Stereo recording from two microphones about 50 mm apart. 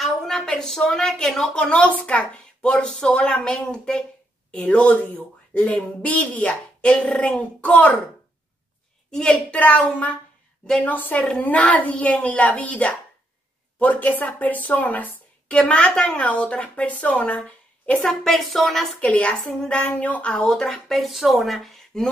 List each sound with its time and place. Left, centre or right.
0.0 s a sound: centre
0.5 s speech: centre
1.6 s speech: left
9.1 s speech: centre
9.6 s a woman's voice: left
15.7 s speech: centre
18.0 s speech: centre
18.9 s speech: left; by 21.0 s centre
21.0 s speech: centre